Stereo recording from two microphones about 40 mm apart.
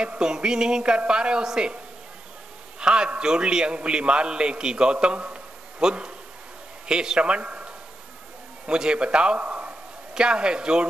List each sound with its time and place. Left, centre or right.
0.0 s speech: right
2.8 s speech: right
5.0 s a sound: right
5.9 s a man's voice: right
10.1 s speech: right